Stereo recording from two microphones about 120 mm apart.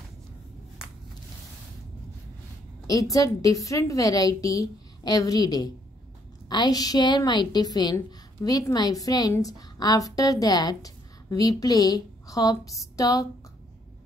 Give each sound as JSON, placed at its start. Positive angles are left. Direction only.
{"t": 2.9, "sound": "a woman's voice", "side_deg": 30}